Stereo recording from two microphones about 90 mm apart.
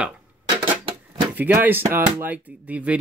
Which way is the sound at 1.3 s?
20° right (ahead or behind).